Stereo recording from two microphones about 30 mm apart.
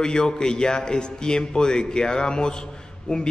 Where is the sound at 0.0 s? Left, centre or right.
Left.